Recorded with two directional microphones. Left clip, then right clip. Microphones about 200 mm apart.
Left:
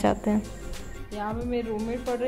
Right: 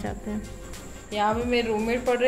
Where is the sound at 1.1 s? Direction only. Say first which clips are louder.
Right 7 dB; 5° right (ahead or behind).